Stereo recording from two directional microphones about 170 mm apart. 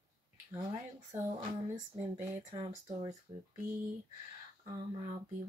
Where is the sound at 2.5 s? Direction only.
20° right (ahead or behind).